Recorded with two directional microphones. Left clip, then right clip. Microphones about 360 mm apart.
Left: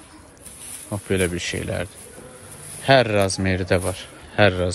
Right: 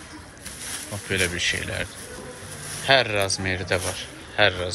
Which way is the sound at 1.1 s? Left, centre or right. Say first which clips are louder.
Even; centre.